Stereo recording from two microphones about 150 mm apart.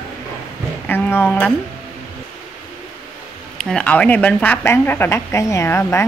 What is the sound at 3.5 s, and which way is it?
Speech, 5° left (ahead or behind).